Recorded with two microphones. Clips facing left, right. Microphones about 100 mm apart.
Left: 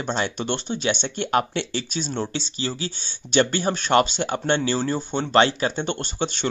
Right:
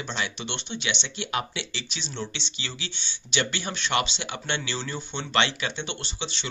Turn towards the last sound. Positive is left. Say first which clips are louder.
# left 9 dB
turn(degrees=50)  # may be behind; listen again after turning